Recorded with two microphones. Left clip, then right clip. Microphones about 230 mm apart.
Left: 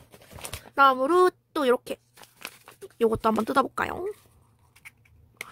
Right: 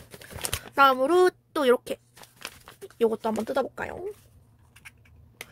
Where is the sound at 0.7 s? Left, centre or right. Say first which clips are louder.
Even; centre.